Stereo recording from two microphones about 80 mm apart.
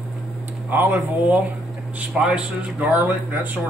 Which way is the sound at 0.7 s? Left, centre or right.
Right.